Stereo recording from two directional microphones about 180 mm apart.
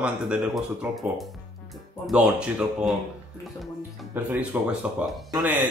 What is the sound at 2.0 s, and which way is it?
Speech, 5° right (ahead or behind).